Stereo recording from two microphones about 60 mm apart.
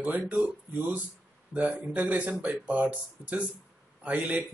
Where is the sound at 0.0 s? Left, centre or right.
Right.